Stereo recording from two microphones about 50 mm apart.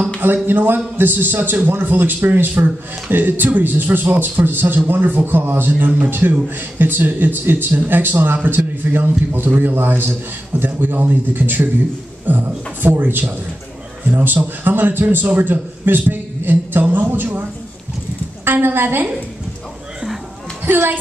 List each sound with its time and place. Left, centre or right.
0.2 s a man's voice: right
18.4 s a woman's voice: right
20.6 s a man's voice: right